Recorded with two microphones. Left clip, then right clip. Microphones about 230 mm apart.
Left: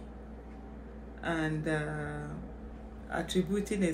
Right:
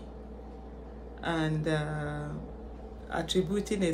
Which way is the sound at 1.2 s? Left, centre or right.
Centre.